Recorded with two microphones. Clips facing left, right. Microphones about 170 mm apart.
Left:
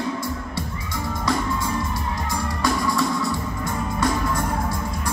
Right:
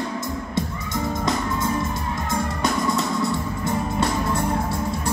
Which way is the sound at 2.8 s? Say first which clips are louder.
Even; 20° right (ahead or behind).